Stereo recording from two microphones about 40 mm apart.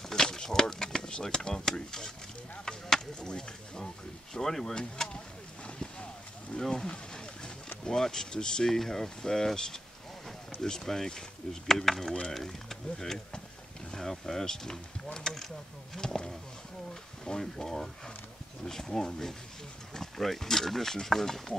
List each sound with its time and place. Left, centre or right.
0.1 s speech: centre
6.6 s speech: centre
8.7 s speech: centre